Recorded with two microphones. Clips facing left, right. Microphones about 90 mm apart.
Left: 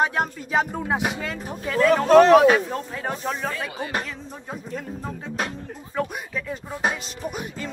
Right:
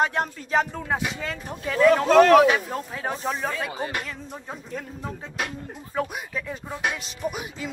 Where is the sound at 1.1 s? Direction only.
5° left (ahead or behind).